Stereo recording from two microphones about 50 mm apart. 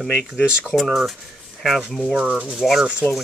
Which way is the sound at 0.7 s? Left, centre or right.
Centre.